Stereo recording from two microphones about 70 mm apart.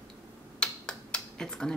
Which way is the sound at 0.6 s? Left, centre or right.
Centre.